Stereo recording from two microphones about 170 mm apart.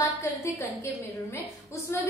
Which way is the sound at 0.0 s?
15° left (ahead or behind).